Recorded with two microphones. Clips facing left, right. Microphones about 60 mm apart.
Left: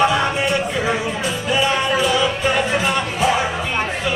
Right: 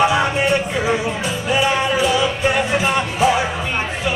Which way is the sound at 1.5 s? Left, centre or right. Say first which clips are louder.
Right 1 dB; centre.